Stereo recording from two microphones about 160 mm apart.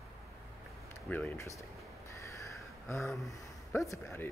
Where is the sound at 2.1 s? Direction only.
20° left (ahead or behind).